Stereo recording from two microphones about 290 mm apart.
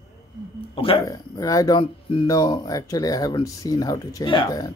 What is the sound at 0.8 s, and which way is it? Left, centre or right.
Speech, centre.